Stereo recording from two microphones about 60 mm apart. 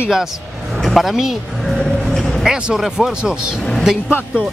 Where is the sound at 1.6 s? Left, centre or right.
Centre.